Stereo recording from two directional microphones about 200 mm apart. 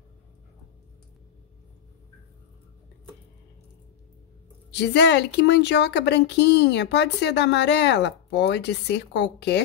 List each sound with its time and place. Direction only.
4.7 s speech: 60° left (ahead or behind)